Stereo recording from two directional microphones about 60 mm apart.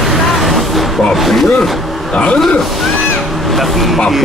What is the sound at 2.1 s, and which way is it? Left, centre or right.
Speech, centre.